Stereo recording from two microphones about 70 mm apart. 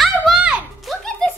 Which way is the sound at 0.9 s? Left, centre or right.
Centre.